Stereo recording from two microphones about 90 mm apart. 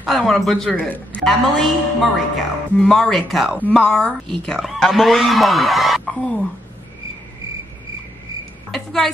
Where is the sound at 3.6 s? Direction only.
10° left (ahead or behind).